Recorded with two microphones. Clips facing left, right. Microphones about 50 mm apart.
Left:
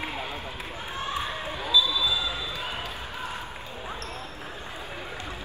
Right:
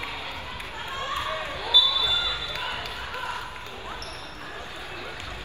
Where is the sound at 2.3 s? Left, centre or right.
Right.